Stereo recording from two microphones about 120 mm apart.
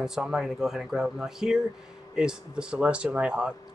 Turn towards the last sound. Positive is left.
turn(degrees=-10)  # may be behind; listen again after turning